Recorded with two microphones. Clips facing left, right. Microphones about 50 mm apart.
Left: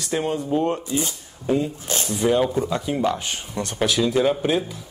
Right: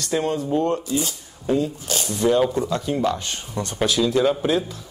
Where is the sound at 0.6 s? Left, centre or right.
Left.